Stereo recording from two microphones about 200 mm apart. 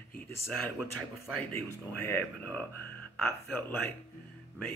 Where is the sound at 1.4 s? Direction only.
10° left (ahead or behind).